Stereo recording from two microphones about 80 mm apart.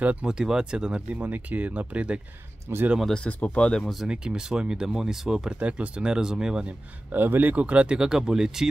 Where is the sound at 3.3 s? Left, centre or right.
Centre.